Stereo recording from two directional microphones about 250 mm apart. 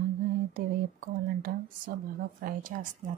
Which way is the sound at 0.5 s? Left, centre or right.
Right.